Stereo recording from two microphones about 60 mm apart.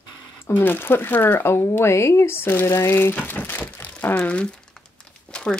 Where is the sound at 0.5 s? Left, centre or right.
Left.